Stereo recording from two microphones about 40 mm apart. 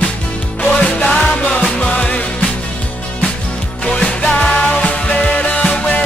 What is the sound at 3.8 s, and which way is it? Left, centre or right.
Music, left.